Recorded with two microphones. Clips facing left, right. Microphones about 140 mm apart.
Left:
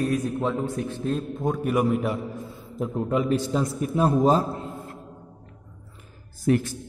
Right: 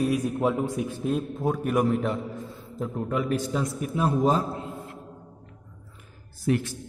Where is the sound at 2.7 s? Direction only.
20° left (ahead or behind); by 4.4 s 35° left (ahead or behind).